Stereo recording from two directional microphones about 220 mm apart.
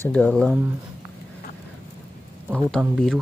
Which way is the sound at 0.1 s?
5° left (ahead or behind).